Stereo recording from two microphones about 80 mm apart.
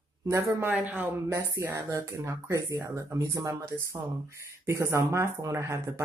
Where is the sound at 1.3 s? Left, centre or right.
Right.